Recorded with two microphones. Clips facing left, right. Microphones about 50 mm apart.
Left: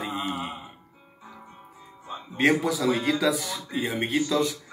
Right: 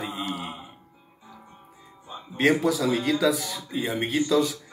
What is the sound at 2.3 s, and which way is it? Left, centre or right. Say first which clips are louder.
A man's voice: right 1 dB; centre.